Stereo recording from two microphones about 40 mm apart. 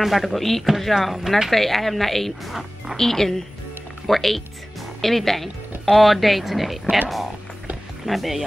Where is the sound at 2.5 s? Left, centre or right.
Centre.